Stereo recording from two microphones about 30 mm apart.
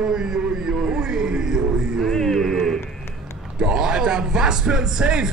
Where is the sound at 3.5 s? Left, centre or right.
Right.